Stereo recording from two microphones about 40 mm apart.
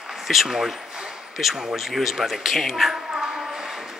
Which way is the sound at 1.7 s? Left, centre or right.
Centre.